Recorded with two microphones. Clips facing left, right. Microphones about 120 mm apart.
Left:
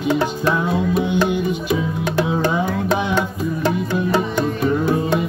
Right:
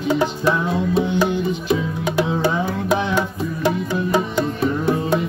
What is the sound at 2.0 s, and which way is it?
Music, 10° right (ahead or behind).